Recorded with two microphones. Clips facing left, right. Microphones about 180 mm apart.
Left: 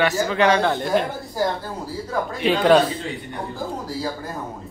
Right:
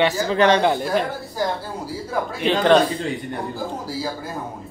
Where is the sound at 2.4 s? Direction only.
5° left (ahead or behind).